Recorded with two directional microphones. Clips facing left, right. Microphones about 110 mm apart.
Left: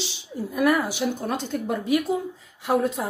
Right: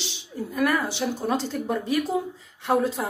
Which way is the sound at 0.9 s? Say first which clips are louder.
Right 1 dB; centre (ahead or behind).